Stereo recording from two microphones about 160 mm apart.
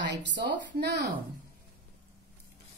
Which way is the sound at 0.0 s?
90° right.